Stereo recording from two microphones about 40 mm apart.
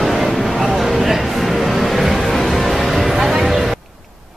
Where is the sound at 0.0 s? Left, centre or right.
Centre.